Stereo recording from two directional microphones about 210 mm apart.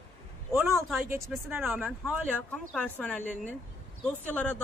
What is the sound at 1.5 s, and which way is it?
Speech, 5° right (ahead or behind).